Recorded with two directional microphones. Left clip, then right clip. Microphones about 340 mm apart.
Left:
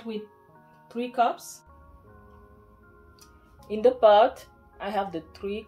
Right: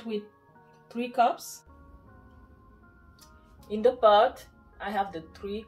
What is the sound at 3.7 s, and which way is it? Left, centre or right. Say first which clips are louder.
Speech: left 2 dB; left.